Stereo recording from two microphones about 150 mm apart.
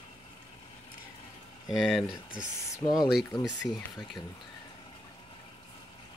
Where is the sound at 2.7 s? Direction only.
25° left (ahead or behind).